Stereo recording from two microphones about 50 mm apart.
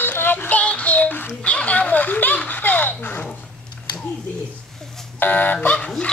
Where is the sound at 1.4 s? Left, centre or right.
Left.